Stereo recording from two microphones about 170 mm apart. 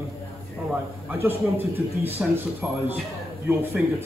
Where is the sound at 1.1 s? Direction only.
15° right (ahead or behind).